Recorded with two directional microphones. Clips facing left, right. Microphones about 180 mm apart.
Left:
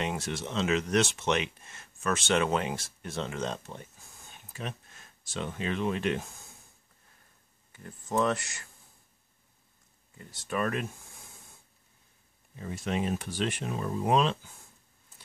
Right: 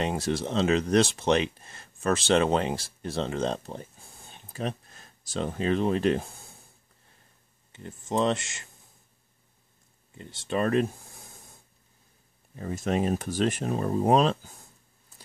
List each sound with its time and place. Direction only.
0.0 s speech: 35° right (ahead or behind)
7.7 s speech: 25° right (ahead or behind)
10.1 s speech: 25° right (ahead or behind)
12.5 s speech: 45° right (ahead or behind)